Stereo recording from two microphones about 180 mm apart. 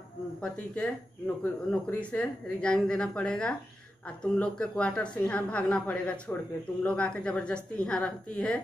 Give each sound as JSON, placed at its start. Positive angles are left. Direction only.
{"t": 0.4, "sound": "a woman's voice", "side_deg": 5}